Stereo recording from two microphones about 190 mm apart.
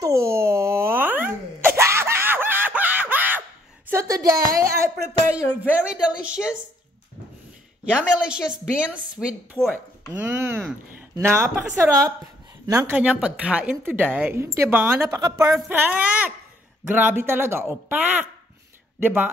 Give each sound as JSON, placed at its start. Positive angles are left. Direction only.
{"t": 0.0, "sound": "a sound", "side_deg": -15}
{"t": 5.3, "sound": "speech", "side_deg": -5}
{"t": 5.9, "sound": "a sound", "side_deg": -5}
{"t": 7.9, "sound": "a woman's voice", "side_deg": -5}
{"t": 9.6, "sound": "speech", "side_deg": 10}
{"t": 10.1, "sound": "speech", "side_deg": -10}